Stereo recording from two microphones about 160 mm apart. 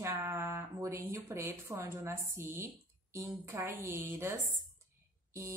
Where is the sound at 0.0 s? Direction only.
15° right (ahead or behind).